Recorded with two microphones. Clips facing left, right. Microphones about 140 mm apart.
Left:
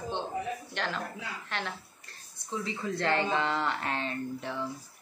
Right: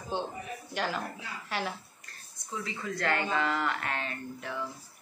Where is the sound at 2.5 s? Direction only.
30° left (ahead or behind).